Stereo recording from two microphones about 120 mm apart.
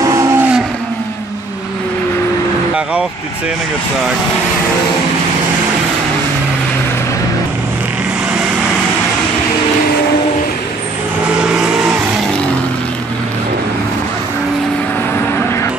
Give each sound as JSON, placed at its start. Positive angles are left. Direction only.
{"t": 0.0, "sound": "vehicle", "side_deg": -25}